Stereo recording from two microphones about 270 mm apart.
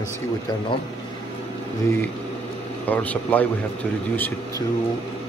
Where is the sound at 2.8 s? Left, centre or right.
Centre.